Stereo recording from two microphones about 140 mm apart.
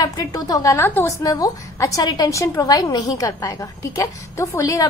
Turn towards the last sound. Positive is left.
turn(degrees=20)  # may be behind; listen again after turning